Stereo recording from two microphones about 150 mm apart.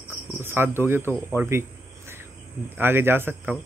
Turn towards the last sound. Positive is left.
turn(degrees=-15)  # may be behind; listen again after turning